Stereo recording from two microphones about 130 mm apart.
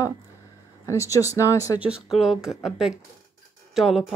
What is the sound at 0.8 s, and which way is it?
Speech, 25° left (ahead or behind).